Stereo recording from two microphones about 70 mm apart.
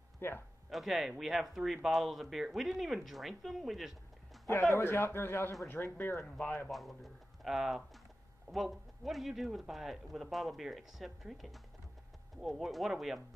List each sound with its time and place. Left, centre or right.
0.2 s a sound: left
0.7 s a man's voice: centre
4.5 s a man's voice: left
6.7 s a man's voice: centre